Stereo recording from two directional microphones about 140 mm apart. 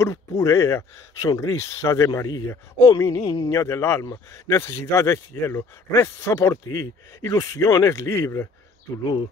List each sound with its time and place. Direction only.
0.4 s speech: 20° left (ahead or behind)